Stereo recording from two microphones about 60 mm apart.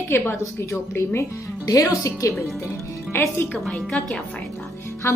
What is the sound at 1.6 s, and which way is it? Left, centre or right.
Speech, left.